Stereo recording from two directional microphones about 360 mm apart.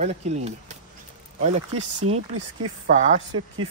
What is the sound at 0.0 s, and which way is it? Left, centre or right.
Speech, centre.